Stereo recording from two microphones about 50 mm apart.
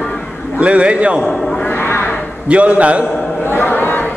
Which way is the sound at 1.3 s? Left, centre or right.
Centre.